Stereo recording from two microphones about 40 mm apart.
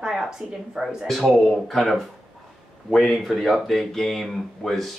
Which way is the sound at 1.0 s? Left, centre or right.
Centre.